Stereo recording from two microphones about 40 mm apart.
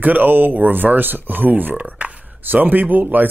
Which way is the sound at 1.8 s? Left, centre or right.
Right.